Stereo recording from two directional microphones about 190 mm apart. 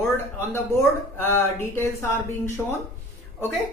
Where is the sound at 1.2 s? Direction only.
10° left (ahead or behind).